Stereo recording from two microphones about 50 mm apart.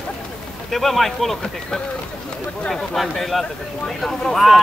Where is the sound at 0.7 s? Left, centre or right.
Centre.